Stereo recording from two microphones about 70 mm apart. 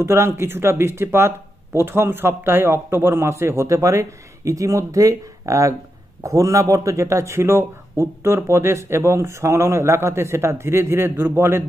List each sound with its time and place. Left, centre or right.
0.0 s speech: right